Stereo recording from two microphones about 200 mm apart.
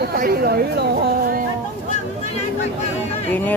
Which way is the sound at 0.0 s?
50° right (ahead or behind).